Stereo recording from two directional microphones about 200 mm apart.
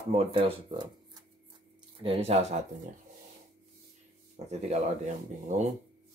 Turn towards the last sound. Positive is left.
turn(degrees=-35)  # may be behind; listen again after turning